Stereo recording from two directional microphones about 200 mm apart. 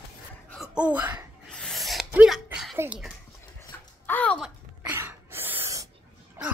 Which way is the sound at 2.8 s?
5° right (ahead or behind).